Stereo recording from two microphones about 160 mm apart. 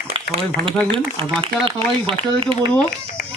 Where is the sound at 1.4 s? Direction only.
35° right (ahead or behind).